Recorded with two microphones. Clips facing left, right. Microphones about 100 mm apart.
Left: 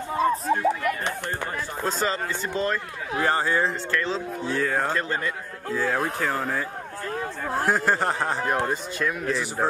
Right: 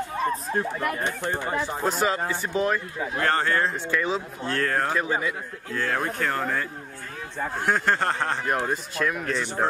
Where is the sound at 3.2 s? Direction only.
10° left (ahead or behind).